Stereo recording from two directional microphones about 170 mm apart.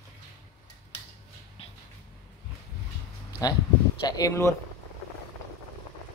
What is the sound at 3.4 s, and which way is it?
Speech, 20° left (ahead or behind).